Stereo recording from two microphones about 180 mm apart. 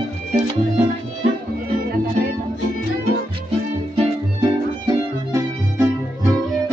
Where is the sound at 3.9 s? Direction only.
30° right (ahead or behind).